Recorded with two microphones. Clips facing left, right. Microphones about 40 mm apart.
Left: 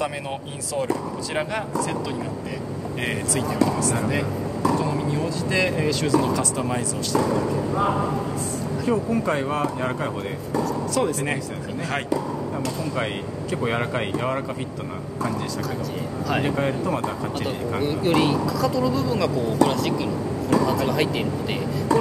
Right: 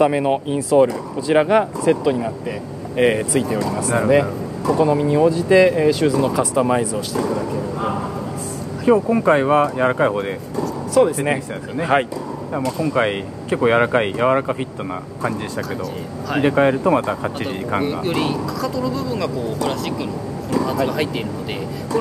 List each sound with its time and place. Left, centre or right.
0.0 s speech: centre
8.8 s speech: right
10.6 s speech: centre; by 14.6 s right
16.4 s speech: right
17.8 s speech: centre